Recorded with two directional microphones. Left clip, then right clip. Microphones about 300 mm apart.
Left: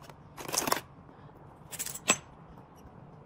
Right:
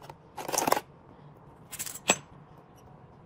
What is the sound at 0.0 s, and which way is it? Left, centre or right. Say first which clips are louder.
Scissors: right 4 dB; centre.